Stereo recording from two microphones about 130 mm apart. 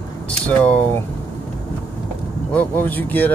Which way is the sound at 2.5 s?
15° left (ahead or behind).